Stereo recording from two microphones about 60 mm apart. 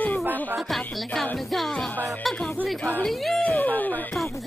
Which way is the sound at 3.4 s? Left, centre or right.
Left.